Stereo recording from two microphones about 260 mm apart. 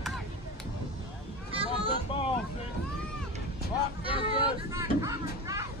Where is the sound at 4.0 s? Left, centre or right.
Right.